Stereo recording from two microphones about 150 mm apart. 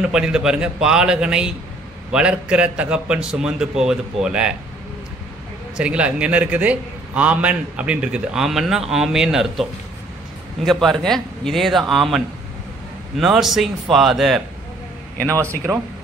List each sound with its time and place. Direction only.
0.0 s a man's voice: 5° right (ahead or behind)
5.8 s a man's voice: 10° right (ahead or behind)
13.2 s a man's voice: 5° right (ahead or behind)
15.2 s speech: 20° right (ahead or behind)